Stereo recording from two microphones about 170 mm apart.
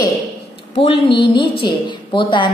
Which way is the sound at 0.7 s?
35° left (ahead or behind).